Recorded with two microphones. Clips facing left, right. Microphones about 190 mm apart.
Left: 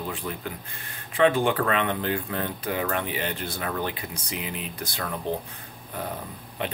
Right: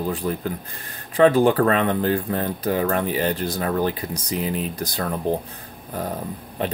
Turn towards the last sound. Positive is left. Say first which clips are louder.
# right 6 dB
turn(degrees=-40)  # may be behind; listen again after turning